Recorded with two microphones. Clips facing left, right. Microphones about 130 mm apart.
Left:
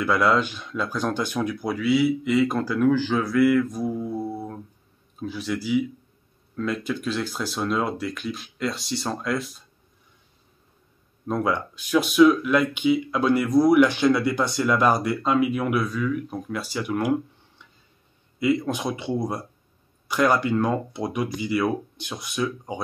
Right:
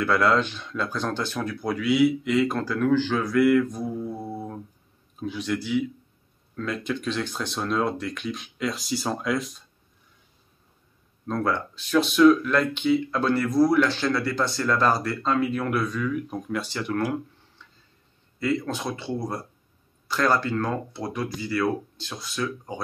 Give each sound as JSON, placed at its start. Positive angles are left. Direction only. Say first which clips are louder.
{"t": 0.0, "sound": "speech", "louder": "left 1 dB", "side_deg": 10}
{"t": 5.2, "sound": "speech", "louder": "even", "side_deg": 0}
{"t": 11.2, "sound": "speech", "louder": "left 1 dB", "side_deg": 15}
{"t": 18.4, "sound": "speech", "louder": "left 3 dB", "side_deg": 15}